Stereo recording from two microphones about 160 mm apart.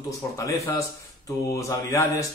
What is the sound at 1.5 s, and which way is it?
Mantra, 20° left (ahead or behind).